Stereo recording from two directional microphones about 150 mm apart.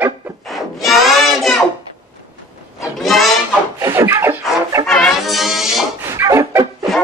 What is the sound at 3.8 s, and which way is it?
Scratching, 15° right (ahead or behind).